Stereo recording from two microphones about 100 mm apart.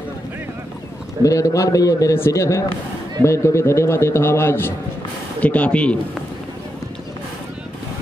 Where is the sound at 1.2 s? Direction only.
35° left (ahead or behind); by 5.9 s 10° left (ahead or behind).